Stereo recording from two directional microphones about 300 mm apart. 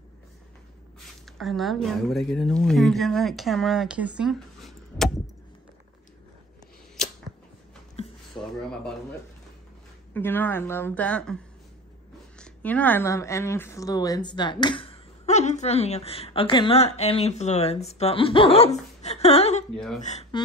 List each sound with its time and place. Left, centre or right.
1.2 s a woman's voice: centre
7.9 s a sound: centre
10.1 s a woman's voice: centre
12.4 s a woman's voice: centre; by 19.6 s left
19.7 s a woman's voice: centre
20.0 s speech: left